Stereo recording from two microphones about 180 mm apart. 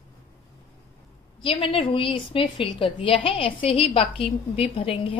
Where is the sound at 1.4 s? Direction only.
30° left (ahead or behind).